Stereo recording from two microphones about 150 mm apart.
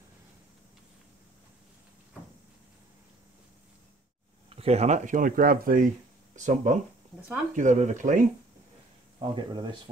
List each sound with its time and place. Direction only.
4.6 s speech: 45° right (ahead or behind); by 5.9 s 70° right (ahead or behind)
6.3 s speech: 55° right (ahead or behind)
9.2 s speech: 30° right (ahead or behind)